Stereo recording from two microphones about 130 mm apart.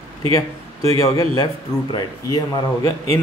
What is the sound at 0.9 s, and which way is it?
A man's voice, 25° left (ahead or behind).